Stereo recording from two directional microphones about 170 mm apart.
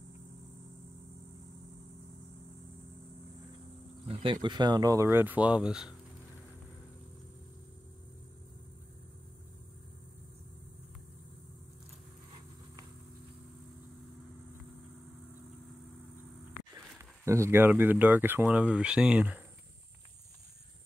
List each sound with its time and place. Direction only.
4.1 s speech: 30° right (ahead or behind); by 5.9 s 5° right (ahead or behind)
17.0 s speech: 15° right (ahead or behind)